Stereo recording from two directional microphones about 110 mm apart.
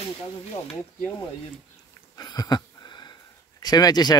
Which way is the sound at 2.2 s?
35° left (ahead or behind).